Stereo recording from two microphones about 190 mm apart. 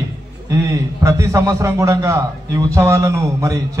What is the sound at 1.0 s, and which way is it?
A man's voice, 15° right (ahead or behind).